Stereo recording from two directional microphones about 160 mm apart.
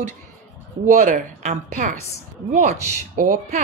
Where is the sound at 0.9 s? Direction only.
50° right (ahead or behind).